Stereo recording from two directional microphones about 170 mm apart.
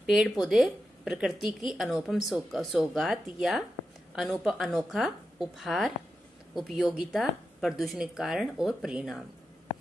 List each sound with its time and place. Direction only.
0.0 s a woman's voice: 5° right (ahead or behind)